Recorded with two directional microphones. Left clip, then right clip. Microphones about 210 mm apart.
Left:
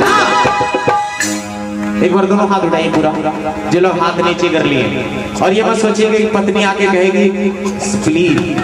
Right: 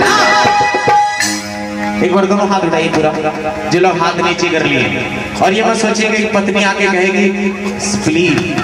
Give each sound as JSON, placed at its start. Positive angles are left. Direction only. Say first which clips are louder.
{"t": 0.0, "sound": "music", "louder": "right 1 dB", "side_deg": -30}
{"t": 2.0, "sound": "a man's voice", "louder": "even", "side_deg": -30}